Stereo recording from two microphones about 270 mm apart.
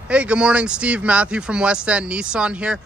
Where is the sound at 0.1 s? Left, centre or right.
Centre.